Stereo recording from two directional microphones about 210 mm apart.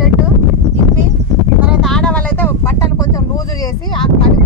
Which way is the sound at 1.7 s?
Centre (ahead or behind).